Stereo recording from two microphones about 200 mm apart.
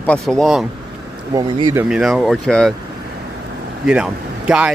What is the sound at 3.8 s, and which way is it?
Speech, 5° right (ahead or behind).